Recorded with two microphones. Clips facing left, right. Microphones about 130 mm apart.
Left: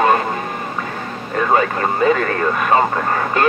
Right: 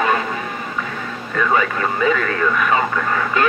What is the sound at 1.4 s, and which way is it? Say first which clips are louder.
Speech: left 2 dB; 40° left (ahead or behind).